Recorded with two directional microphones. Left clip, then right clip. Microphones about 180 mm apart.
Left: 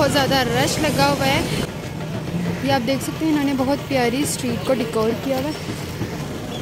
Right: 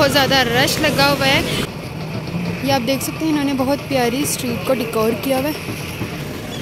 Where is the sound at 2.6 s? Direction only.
Centre (ahead or behind).